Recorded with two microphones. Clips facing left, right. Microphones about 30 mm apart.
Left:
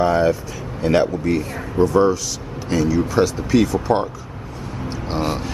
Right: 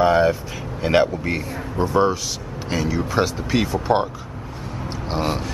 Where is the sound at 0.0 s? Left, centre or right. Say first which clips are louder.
Even; centre.